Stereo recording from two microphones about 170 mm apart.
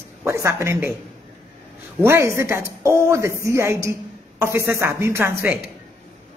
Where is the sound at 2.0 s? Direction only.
15° right (ahead or behind).